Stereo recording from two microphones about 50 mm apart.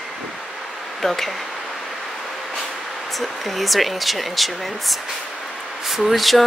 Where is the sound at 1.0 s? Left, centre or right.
Centre.